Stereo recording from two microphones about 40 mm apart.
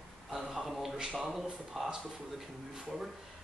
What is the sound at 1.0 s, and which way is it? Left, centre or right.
Speech, right.